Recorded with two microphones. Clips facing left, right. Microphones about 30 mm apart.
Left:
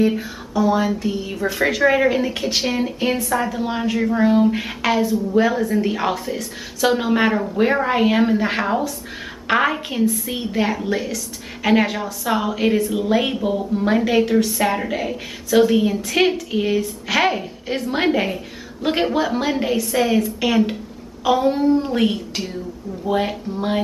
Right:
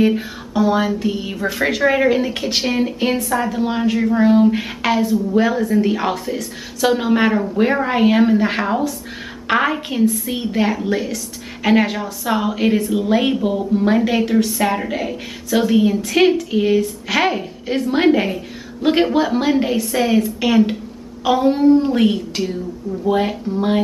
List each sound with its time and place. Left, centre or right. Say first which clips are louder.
0.6 s music: right 2 dB; right
1.3 s a woman's voice: left 2 dB; centre